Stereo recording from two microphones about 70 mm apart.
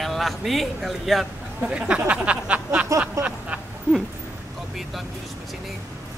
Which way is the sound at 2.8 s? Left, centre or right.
Right.